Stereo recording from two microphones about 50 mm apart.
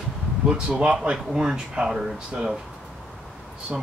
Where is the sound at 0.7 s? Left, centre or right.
Right.